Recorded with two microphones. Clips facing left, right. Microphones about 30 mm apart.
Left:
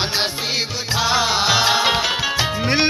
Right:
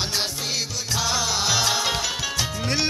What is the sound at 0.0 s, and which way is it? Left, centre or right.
Music, left.